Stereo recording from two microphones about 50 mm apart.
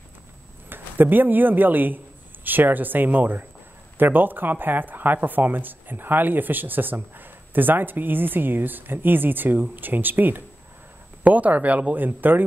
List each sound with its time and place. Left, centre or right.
0.7 s speech: right